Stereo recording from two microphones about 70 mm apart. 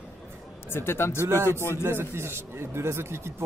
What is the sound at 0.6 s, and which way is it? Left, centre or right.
Speech, left.